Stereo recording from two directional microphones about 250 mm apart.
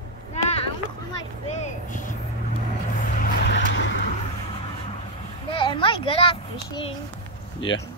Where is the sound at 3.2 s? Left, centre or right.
Left.